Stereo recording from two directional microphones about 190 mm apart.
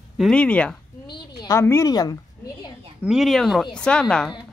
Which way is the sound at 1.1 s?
20° left (ahead or behind).